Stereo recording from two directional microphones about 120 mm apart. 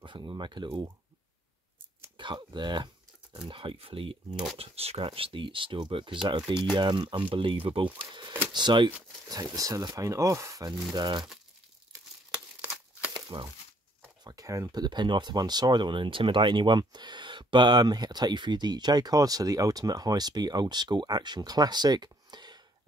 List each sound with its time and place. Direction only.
0.0 s speech: 40° right (ahead or behind)
2.1 s speech: 40° right (ahead or behind)
13.1 s a sound: 40° right (ahead or behind)
14.2 s speech: 30° right (ahead or behind)